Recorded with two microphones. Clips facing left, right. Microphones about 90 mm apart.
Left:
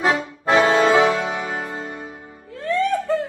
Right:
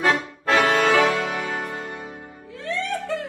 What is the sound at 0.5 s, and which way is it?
Brass instrument, 30° left (ahead or behind).